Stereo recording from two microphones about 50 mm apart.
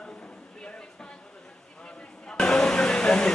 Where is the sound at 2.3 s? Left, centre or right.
Centre.